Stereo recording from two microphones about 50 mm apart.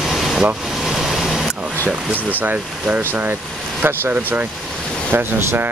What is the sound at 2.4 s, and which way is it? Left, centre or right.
Speech, right.